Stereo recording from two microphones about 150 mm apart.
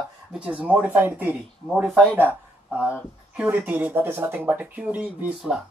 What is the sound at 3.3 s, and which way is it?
Speech, 10° right (ahead or behind).